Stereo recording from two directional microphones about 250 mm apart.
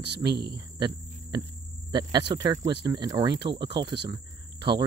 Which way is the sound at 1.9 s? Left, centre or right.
Centre.